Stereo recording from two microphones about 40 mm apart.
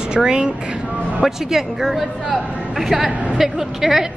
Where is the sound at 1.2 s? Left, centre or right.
Centre.